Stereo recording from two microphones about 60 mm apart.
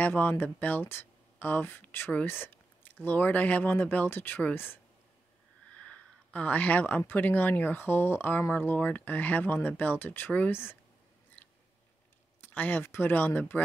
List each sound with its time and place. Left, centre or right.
0.0 s speech: left
5.7 s a sound: left
7.0 s speech: left
10.5 s speech: left
11.4 s chewing: left
12.4 s speech: left